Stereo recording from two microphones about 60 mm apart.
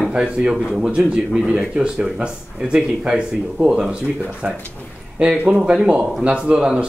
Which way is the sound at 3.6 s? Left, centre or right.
Centre.